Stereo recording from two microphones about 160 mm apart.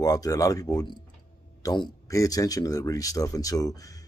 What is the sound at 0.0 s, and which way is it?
Speech, 20° left (ahead or behind).